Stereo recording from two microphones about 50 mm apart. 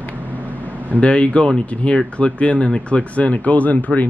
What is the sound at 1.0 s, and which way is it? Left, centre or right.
Speech, left.